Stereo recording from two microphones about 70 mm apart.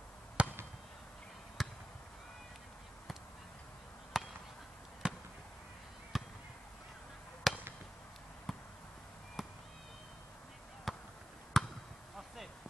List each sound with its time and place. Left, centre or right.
0.4 s fireworks: centre
1.6 s basketball bounce: centre
4.1 s chop: centre
5.0 s basketball bounce: centre
6.1 s chop: centre
7.5 s chop: centre
8.5 s a sound: centre
9.4 s fireworks: centre
10.9 s a sound: centre
11.6 s chop: centre